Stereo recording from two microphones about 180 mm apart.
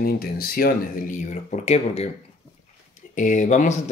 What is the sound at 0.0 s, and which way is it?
Speech, 55° left (ahead or behind).